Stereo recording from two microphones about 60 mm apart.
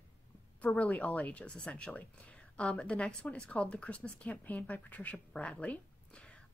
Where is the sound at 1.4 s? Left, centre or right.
Centre.